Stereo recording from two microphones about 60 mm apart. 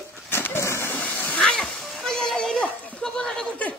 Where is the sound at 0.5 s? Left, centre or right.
Left.